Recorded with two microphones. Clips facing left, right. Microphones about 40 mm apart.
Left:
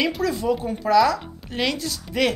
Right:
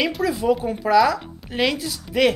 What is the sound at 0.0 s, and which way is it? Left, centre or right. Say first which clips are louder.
Speech: right 1 dB; centre.